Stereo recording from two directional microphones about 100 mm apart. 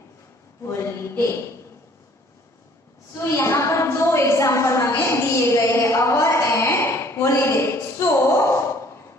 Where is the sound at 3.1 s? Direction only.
25° left (ahead or behind).